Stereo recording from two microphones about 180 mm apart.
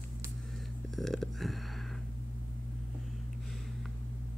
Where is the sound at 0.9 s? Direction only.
Centre (ahead or behind).